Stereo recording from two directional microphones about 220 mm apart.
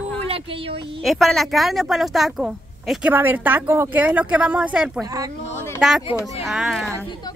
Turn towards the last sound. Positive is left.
turn(degrees=0)  # may be behind; listen again after turning